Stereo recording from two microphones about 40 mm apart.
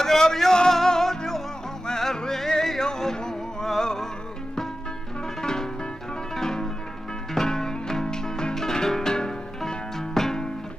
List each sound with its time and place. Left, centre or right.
0.0 s music: centre
5.4 s music: centre